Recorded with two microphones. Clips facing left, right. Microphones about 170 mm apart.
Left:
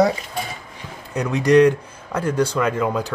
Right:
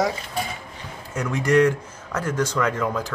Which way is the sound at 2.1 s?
30° left (ahead or behind).